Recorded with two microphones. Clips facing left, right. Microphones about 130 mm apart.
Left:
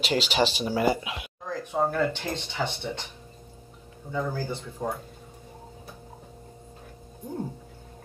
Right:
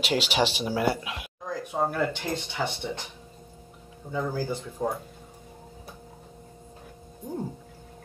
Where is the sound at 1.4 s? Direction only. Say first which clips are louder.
Left 1 dB; 10° right (ahead or behind).